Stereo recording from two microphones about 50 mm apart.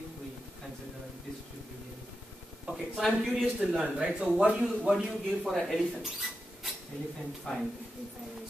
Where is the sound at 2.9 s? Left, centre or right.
Centre.